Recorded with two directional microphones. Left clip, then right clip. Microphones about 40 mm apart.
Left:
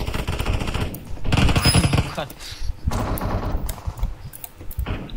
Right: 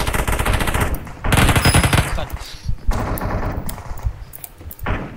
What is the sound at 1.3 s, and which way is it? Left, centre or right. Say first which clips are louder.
Gunshot: right 5 dB; centre.